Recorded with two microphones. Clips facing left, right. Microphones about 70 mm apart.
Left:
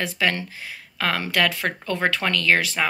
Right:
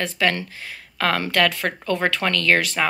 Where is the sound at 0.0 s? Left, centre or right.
Centre.